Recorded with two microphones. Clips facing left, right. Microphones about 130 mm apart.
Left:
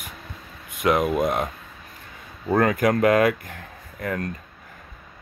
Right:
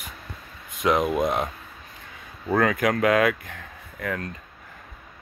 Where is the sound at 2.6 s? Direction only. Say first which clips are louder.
Left 2 dB; 40° left (ahead or behind).